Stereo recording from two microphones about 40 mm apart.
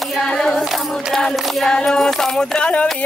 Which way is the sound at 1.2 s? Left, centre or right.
Centre.